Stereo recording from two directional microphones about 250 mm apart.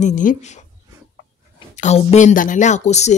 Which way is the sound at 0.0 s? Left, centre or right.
Left.